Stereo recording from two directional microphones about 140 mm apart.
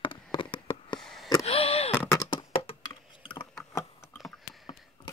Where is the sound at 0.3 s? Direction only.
40° left (ahead or behind).